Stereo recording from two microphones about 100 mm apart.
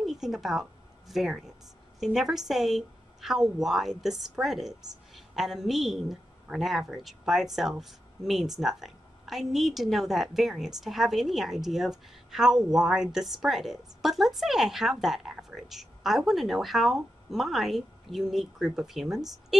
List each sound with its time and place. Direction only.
0.0 s a woman's voice: 5° right (ahead or behind)